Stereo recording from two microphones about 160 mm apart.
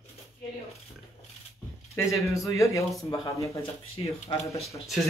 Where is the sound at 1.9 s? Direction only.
20° left (ahead or behind).